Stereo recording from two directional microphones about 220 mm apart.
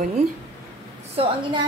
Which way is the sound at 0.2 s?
30° right (ahead or behind).